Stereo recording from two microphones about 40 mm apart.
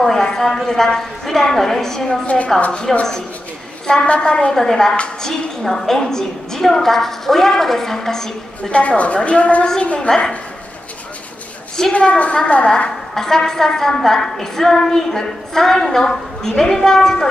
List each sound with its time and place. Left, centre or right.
0.0 s a sound: centre
0.7 s a woman's voice: centre
2.2 s a woman's voice: left
2.8 s a woman's voice: centre
4.6 s a woman's voice: centre
8.7 s a woman's voice: left; by 10.3 s centre
11.9 s a woman's voice: left
12.6 s a woman's voice: centre